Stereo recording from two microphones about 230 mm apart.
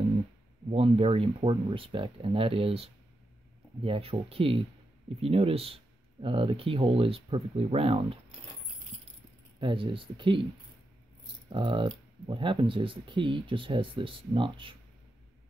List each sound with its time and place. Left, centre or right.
0.7 s speech: right
8.9 s keys jangling: right
9.6 s speech: right
11.5 s speech: right